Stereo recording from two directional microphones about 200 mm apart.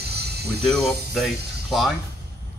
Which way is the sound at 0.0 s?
55° right (ahead or behind).